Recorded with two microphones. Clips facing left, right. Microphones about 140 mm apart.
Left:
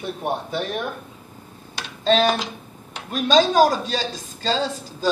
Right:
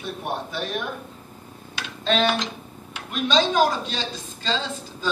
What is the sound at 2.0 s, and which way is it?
A man's voice, 35° left (ahead or behind).